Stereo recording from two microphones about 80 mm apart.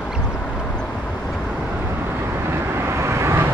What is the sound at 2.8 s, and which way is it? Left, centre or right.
Vehicle, right.